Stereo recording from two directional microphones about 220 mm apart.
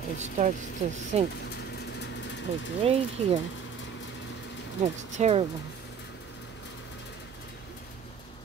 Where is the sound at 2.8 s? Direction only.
25° right (ahead or behind).